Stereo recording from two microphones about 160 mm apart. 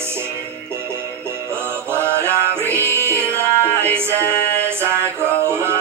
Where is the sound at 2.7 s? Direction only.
15° right (ahead or behind).